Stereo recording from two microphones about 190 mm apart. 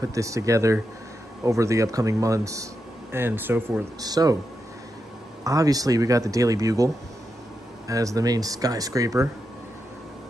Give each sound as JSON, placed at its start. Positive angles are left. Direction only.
{"t": 0.0, "sound": "speech", "side_deg": -15}
{"t": 5.4, "sound": "speech", "side_deg": -15}
{"t": 7.9, "sound": "speech", "side_deg": -15}